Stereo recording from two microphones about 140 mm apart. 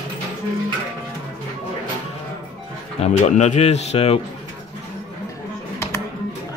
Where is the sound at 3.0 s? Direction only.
55° left (ahead or behind).